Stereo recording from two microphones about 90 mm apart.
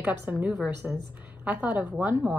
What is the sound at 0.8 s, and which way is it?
A woman's voice, 5° right (ahead or behind).